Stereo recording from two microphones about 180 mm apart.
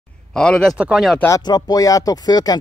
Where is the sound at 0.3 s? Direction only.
5° left (ahead or behind).